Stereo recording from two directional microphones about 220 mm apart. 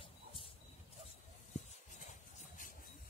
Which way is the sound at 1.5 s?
35° left (ahead or behind).